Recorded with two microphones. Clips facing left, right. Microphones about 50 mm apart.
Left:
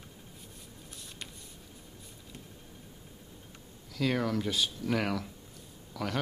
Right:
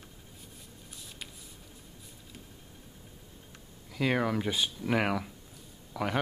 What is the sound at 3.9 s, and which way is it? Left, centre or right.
Speech, centre.